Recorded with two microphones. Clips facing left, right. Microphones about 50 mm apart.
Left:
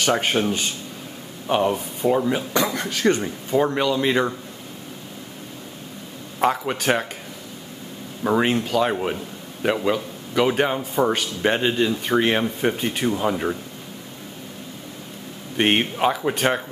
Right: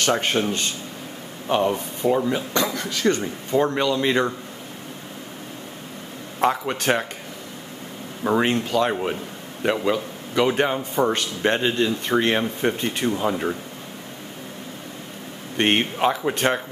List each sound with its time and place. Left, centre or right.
0.0 s speech: centre
2.7 s speech: left
3.2 s a man's voice: centre
6.4 s a man's voice: centre
8.2 s a man's voice: centre
15.5 s a man's voice: centre